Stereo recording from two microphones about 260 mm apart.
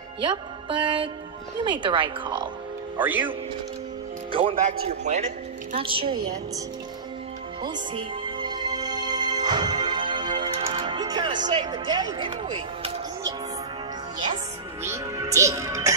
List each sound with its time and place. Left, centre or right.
0.2 s speech: centre
3.0 s speech: centre
4.3 s a man's voice: centre
7.6 s music: centre
11.4 s speech: centre
14.8 s speech: centre